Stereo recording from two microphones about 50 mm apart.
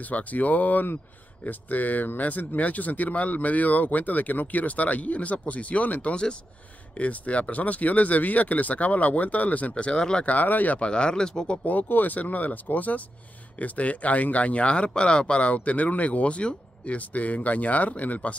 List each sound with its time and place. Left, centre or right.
0.0 s speech: left
10.2 s speech: left
10.8 s speech: centre
11.6 s speech: left